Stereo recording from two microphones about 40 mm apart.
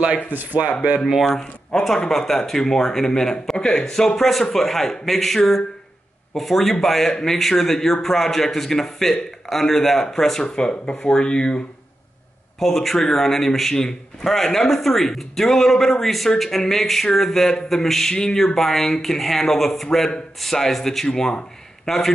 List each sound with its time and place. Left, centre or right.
0.3 s speech: right
1.3 s speech: centre
10.4 s speech: left
12.5 s speech: centre